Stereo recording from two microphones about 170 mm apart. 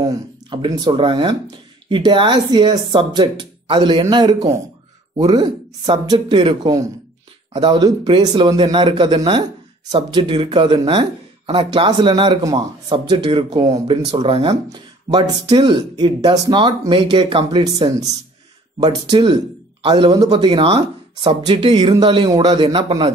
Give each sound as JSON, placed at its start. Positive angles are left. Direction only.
{"t": 0.0, "sound": "speech", "side_deg": -25}